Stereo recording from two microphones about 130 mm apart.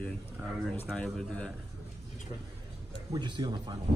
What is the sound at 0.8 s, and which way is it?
Speech, 5° left (ahead or behind).